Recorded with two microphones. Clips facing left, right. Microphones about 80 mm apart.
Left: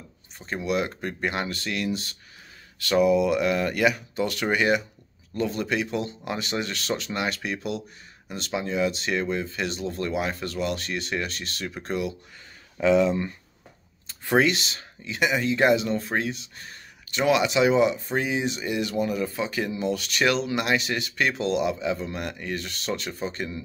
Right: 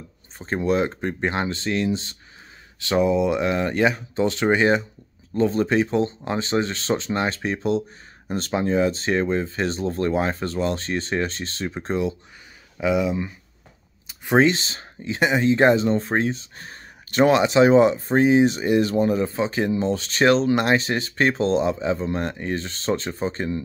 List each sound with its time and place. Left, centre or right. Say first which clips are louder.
0.4 s speech: right 5 dB; right
12.7 s speech: left 1 dB; centre; by 23.6 s right